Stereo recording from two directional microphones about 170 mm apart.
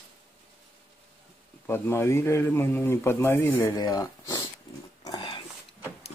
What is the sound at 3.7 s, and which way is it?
Speech, 20° left (ahead or behind).